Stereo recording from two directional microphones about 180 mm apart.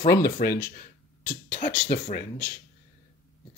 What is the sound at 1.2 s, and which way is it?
Speech, 45° left (ahead or behind).